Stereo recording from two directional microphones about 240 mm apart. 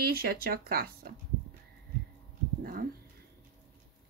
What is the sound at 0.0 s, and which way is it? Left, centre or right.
Speech, right.